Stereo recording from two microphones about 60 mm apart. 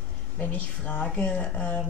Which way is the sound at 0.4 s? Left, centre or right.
Left.